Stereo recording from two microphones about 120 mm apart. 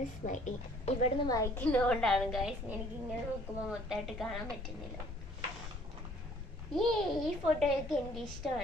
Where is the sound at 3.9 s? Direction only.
Centre (ahead or behind).